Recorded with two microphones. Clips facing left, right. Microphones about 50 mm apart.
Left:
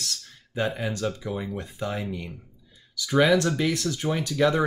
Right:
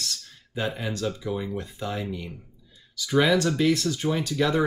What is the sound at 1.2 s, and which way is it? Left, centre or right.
Speech, centre.